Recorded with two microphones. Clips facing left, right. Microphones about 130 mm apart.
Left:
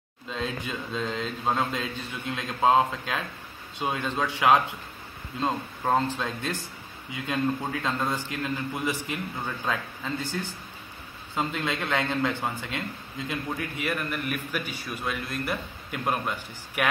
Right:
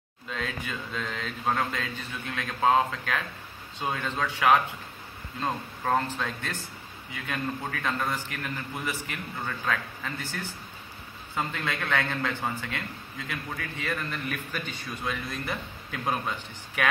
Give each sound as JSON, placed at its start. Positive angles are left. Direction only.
{"t": 0.3, "sound": "a man's voice", "side_deg": 20}